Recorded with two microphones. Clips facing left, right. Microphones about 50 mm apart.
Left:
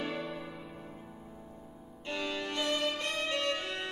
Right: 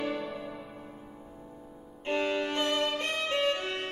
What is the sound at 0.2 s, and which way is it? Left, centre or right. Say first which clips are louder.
Music: right 2 dB; centre.